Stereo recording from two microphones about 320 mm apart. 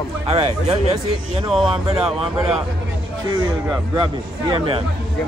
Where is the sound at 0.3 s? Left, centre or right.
Centre.